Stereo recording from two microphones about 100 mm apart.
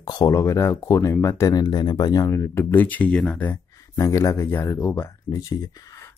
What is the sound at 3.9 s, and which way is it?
Speech, 30° left (ahead or behind).